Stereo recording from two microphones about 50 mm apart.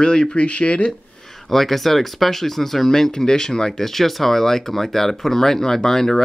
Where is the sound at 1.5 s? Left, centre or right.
Centre.